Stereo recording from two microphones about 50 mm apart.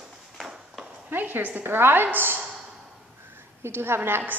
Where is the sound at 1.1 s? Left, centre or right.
Right.